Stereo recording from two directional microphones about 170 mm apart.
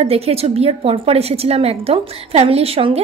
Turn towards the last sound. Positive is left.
turn(degrees=-35)  # may be behind; listen again after turning